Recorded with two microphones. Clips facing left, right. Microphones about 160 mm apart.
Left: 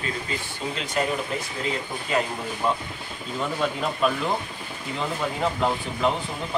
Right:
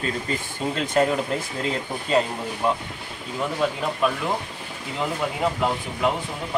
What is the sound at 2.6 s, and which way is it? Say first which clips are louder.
Speech: right 2 dB; 10° right (ahead or behind).